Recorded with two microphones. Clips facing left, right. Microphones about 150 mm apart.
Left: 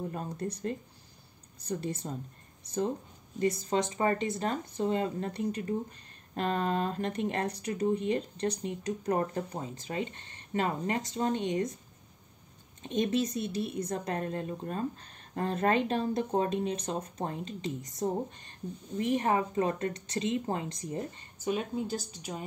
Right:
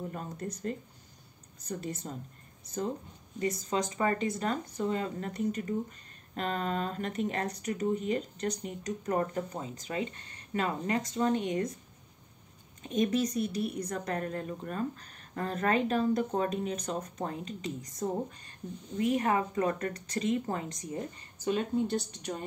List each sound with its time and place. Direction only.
0.1 s speech: 35° left (ahead or behind)
3.3 s speech: 30° left (ahead or behind)
12.8 s speech: 25° left (ahead or behind)
21.5 s speech: 5° left (ahead or behind)